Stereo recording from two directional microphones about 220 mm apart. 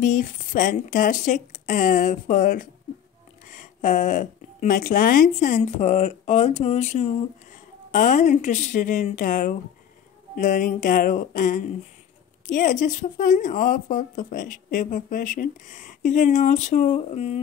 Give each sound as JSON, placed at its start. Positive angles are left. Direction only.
{"t": 0.0, "sound": "a woman's voice", "side_deg": 35}